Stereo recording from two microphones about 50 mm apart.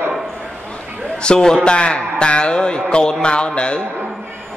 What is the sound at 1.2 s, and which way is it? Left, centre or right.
A man's voice, centre.